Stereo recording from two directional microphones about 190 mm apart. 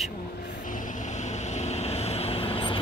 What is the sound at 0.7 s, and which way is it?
Vehicle, 45° left (ahead or behind).